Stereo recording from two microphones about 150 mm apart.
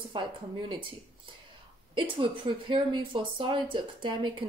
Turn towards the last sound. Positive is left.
turn(degrees=-30)  # may be behind; listen again after turning